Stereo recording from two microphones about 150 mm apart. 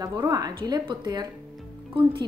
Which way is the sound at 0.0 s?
25° right (ahead or behind).